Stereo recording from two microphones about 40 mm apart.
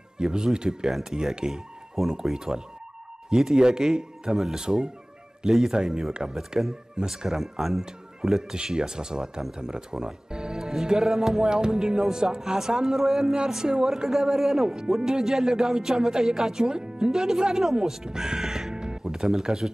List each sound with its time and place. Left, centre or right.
0.2 s speech: centre